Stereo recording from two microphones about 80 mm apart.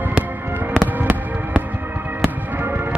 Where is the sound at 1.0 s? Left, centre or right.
Right.